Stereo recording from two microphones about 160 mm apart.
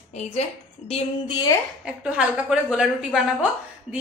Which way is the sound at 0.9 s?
40° left (ahead or behind).